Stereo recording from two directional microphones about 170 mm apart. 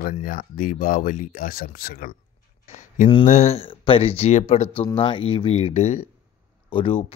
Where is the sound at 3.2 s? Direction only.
45° left (ahead or behind).